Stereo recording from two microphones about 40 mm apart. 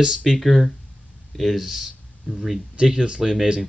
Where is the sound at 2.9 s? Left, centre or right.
Right.